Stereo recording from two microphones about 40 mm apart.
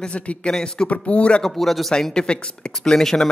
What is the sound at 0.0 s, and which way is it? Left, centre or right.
Speech, left.